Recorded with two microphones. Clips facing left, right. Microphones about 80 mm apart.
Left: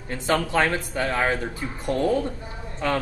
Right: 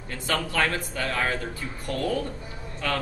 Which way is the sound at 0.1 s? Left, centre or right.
Left.